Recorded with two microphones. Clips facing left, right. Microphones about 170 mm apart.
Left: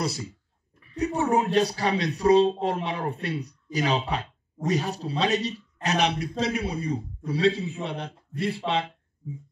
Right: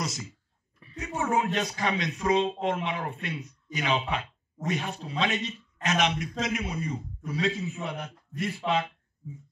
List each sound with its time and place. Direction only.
0.0 s speech: 35° left (ahead or behind)